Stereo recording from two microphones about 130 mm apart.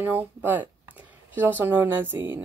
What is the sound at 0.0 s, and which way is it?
Speech, 15° right (ahead or behind).